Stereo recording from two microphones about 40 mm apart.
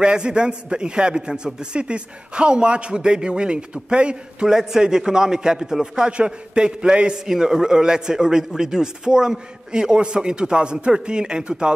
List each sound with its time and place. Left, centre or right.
0.0 s a man's voice: right